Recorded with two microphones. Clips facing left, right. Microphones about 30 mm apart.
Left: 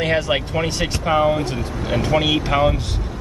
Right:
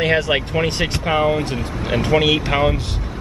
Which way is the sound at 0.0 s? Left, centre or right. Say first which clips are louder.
Right 2 dB; centre.